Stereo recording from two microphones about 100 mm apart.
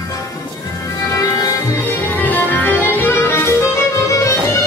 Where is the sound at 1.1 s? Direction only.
35° left (ahead or behind).